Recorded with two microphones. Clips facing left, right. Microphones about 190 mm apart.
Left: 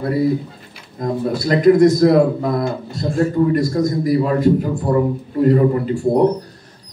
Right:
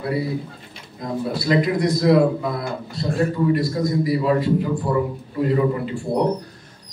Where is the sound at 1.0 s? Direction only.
45° left (ahead or behind).